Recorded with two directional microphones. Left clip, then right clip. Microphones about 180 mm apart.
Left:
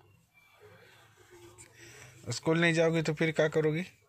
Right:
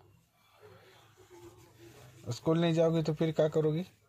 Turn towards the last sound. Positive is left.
turn(degrees=0)  # may be behind; listen again after turning